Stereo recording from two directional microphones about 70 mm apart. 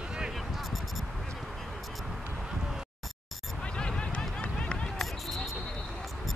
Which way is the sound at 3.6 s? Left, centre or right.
Centre.